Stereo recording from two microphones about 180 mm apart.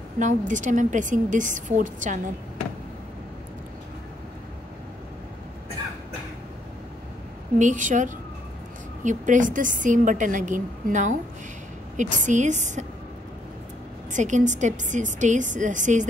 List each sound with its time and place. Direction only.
0.2 s a woman's voice: 45° right (ahead or behind)
7.5 s a woman's voice: 45° right (ahead or behind)
14.1 s a woman's voice: 40° right (ahead or behind)